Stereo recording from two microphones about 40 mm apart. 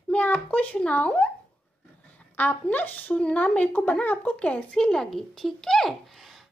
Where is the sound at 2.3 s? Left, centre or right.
Left.